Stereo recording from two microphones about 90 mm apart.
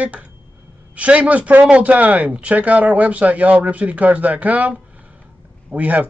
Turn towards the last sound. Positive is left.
turn(degrees=-15)  # may be behind; listen again after turning